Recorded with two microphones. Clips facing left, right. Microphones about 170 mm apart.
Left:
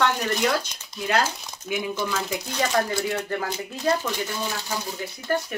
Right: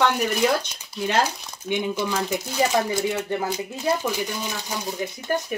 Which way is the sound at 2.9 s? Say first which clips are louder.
Right 2 dB; 20° right (ahead or behind).